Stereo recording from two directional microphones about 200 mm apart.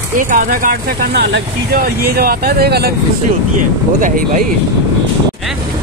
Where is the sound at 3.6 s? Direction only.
40° right (ahead or behind).